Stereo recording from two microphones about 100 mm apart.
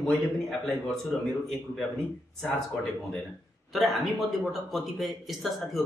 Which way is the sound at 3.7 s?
Centre (ahead or behind).